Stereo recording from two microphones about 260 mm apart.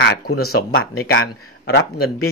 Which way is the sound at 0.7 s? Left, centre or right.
Left.